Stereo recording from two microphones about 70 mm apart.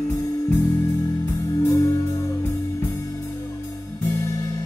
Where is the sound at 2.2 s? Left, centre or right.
Left.